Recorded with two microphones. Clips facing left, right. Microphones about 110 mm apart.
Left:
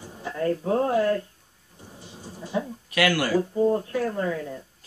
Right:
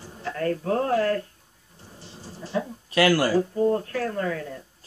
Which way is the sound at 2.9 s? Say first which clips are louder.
Right 3 dB; 35° right (ahead or behind).